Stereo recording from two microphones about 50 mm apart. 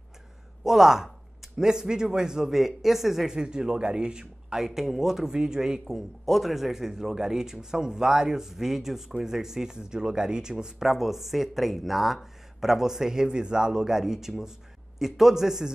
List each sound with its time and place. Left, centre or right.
0.7 s a man's voice: centre
4.6 s a man's voice: centre